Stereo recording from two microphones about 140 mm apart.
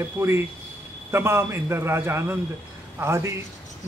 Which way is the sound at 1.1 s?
15° right (ahead or behind).